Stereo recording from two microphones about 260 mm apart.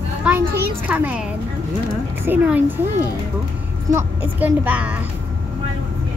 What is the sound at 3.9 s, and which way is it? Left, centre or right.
A woman's voice, centre.